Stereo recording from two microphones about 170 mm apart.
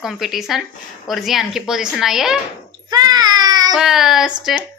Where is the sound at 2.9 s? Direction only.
25° right (ahead or behind).